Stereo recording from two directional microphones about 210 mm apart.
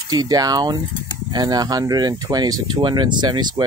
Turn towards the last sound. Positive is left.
turn(degrees=-20)  # may be behind; listen again after turning